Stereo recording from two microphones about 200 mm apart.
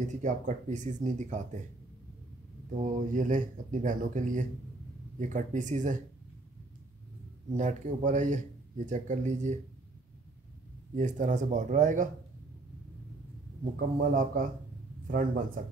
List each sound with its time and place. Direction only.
0.1 s speech: 35° right (ahead or behind)
2.8 s speech: 40° right (ahead or behind)
7.5 s speech: 35° right (ahead or behind)
11.0 s speech: 40° right (ahead or behind)
13.7 s a man's voice: 45° right (ahead or behind)